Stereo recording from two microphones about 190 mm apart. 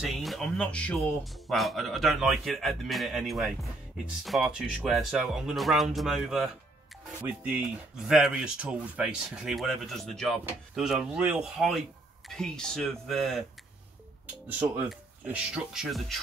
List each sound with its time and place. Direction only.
0.0 s speech: centre (ahead or behind)
14.5 s speech: 10° right (ahead or behind)